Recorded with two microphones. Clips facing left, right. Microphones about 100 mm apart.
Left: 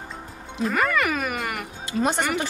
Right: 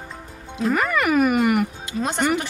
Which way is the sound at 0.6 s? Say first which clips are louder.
Right 2 dB; 5° right (ahead or behind).